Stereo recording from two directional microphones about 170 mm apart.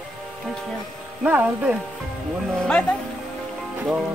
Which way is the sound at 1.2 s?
10° right (ahead or behind).